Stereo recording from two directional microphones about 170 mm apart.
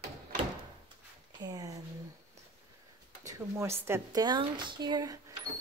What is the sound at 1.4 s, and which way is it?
Speech, 20° right (ahead or behind).